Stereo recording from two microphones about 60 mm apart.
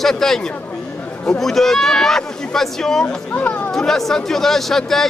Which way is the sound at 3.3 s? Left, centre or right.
Left.